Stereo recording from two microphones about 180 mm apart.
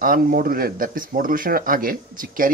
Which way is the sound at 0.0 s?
50° right (ahead or behind).